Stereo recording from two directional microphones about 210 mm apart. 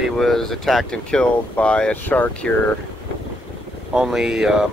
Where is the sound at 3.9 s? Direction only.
5° right (ahead or behind).